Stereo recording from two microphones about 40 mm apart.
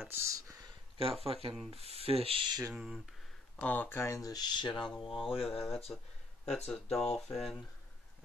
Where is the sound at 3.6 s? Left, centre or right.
Left.